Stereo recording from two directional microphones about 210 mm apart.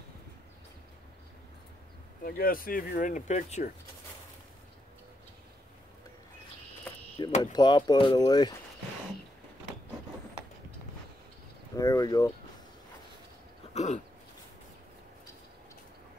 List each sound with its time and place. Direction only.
2.2 s speech: 45° left (ahead or behind)
7.2 s speech: 20° left (ahead or behind)
11.7 s speech: 15° left (ahead or behind)
13.7 s a sound: 35° left (ahead or behind)